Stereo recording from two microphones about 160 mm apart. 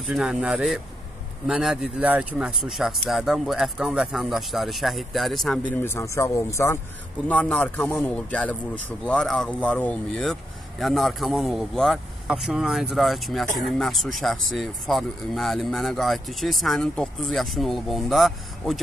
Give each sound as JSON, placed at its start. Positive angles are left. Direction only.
{"t": 0.0, "sound": "speech", "side_deg": 0}
{"t": 5.8, "sound": "speech", "side_deg": 15}